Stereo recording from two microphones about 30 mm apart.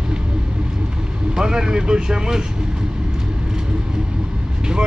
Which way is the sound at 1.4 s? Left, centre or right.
Right.